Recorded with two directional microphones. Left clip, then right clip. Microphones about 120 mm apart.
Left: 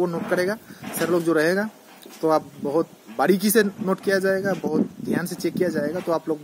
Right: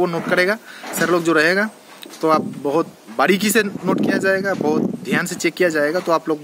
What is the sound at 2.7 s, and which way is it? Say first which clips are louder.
Speech: right 3 dB; 15° right (ahead or behind).